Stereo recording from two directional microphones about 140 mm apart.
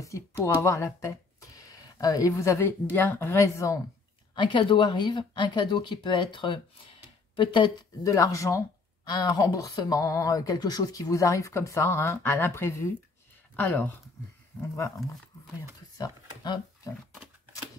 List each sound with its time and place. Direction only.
0.0 s speech: 20° left (ahead or behind)
4.4 s speech: 35° left (ahead or behind)
8.0 s speech: 25° left (ahead or behind)
16.0 s a sound: 25° left (ahead or behind)